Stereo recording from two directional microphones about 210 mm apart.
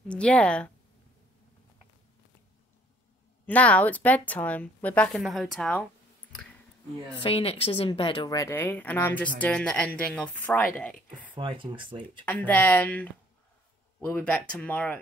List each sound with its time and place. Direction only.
0.1 s speech: 5° left (ahead or behind)
3.4 s a woman's voice: 5° left (ahead or behind)
7.2 s a woman's voice: 25° left (ahead or behind); by 10.6 s 5° left (ahead or behind)
11.3 s speech: 25° right (ahead or behind)
12.3 s a woman's voice: 10° left (ahead or behind)